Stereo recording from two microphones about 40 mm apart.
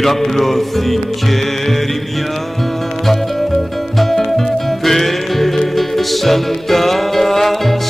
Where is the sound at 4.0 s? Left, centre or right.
Centre.